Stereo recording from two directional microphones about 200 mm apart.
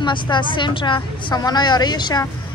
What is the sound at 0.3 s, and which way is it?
Speech, 25° left (ahead or behind).